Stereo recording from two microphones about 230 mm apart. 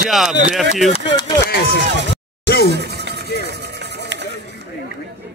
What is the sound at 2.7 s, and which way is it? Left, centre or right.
Music, right.